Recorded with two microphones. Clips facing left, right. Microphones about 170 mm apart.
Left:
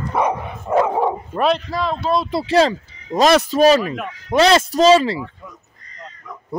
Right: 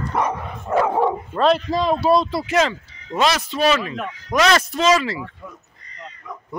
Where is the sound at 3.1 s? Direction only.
15° left (ahead or behind).